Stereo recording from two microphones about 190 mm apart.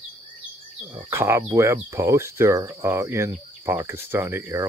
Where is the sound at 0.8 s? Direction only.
15° right (ahead or behind).